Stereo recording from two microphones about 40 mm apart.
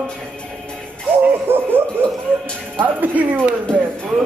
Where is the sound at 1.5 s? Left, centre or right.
Right.